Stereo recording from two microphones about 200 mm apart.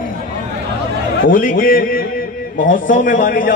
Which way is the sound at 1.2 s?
45° left (ahead or behind).